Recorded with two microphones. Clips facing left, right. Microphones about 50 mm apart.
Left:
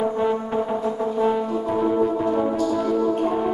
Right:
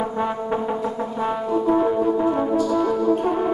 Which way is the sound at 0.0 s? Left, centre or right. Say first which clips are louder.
Left 2 dB; centre.